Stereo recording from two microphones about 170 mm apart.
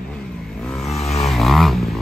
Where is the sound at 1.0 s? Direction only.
40° left (ahead or behind).